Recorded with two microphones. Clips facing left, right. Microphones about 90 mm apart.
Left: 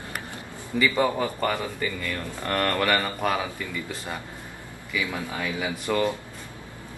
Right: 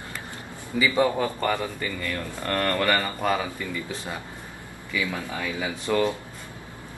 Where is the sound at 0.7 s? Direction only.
10° right (ahead or behind).